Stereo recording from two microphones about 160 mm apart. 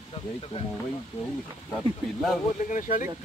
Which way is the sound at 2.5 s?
55° left (ahead or behind).